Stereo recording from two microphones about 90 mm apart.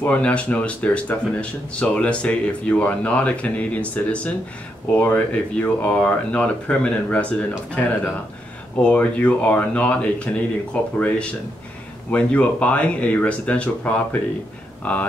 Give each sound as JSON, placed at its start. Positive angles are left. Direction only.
{"t": 0.0, "sound": "speech", "side_deg": 15}